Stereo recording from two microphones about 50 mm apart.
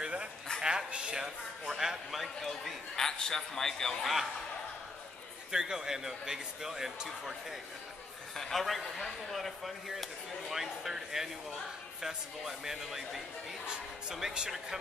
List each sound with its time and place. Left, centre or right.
0.0 s a sound: right
0.6 s a man's voice: centre
2.0 s a man's voice: centre
5.5 s a man's voice: centre
8.4 s a man's voice: centre